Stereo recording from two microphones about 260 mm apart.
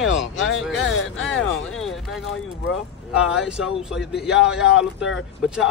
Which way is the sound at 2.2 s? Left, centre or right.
Left.